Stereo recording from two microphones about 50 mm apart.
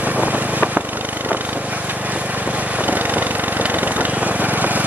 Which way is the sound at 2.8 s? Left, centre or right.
Right.